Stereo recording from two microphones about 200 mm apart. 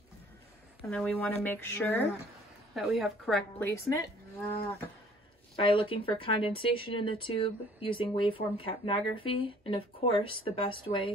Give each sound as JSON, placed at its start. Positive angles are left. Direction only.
{"t": 0.8, "sound": "a woman's voice", "side_deg": 0}
{"t": 5.6, "sound": "speech", "side_deg": 25}